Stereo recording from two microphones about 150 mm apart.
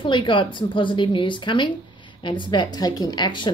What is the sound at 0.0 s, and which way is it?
Speech, 35° left (ahead or behind).